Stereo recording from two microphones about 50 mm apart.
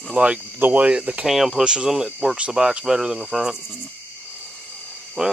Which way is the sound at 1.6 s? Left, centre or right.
Centre.